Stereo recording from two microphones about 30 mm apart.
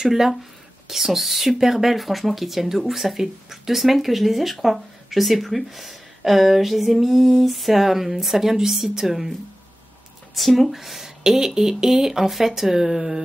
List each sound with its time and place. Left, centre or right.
0.0 s speech: centre
2.0 s speech: centre
10.3 s speech: centre
10.8 s speech: centre